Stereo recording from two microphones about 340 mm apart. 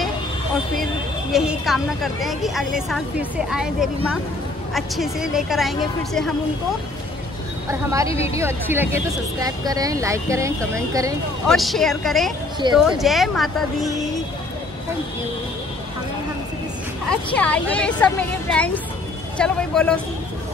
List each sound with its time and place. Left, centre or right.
1.3 s a woman's voice: centre
8.1 s a woman's voice: centre
8.4 s a woman's voice: centre
17.1 s a woman's voice: centre